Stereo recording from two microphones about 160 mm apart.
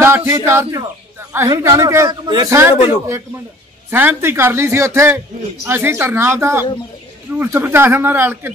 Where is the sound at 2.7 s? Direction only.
40° left (ahead or behind).